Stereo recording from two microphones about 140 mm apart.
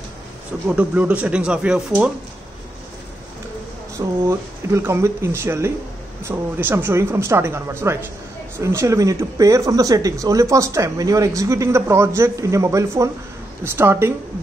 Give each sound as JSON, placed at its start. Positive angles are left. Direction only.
{"t": 0.7, "sound": "speech", "side_deg": -10}
{"t": 4.3, "sound": "speech", "side_deg": -20}